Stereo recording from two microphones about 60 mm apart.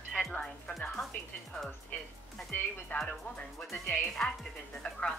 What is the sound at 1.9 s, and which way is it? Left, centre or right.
Speech, left.